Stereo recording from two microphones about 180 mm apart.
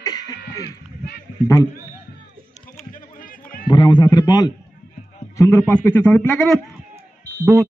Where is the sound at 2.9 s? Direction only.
50° left (ahead or behind).